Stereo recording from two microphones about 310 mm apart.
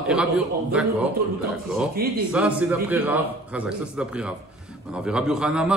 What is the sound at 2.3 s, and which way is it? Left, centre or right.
A man's voice, centre.